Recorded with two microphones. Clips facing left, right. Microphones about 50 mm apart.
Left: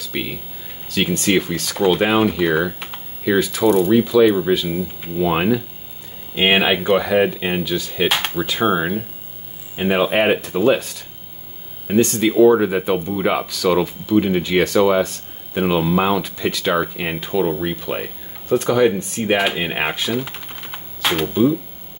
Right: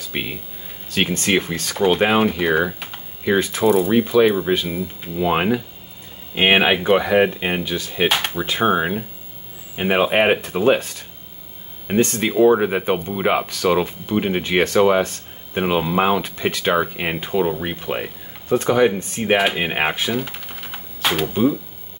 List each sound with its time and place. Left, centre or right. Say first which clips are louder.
0.1 s speech: left 1 dB; right
1.5 s speech: left 1 dB; centre
3.3 s speech: left 1 dB; right
3.6 s speech: left 1 dB; centre
4.0 s speech: left 2 dB; right
8.1 s speech: even; centre
8.4 s speech: even; centre
11.9 s speech: left 2 dB; right
16.2 s speech: even; right
17.3 s speech: left 2 dB; centre